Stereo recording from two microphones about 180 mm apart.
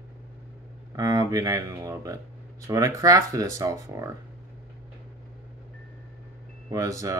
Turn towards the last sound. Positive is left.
turn(degrees=-20)  # may be behind; listen again after turning